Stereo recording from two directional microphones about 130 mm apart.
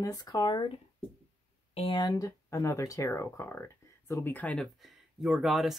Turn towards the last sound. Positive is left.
turn(degrees=0)  # may be behind; listen again after turning